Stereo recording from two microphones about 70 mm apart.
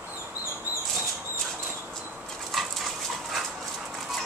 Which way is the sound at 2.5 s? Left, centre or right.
Centre.